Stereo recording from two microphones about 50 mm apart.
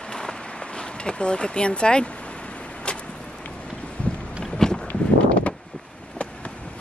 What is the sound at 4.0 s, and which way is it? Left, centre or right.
Boat, left.